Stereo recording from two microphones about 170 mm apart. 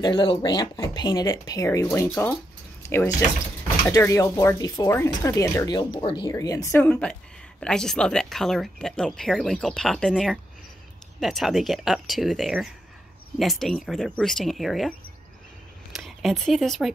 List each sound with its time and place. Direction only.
0.0 s speech: 30° left (ahead or behind); by 16.9 s centre (ahead or behind)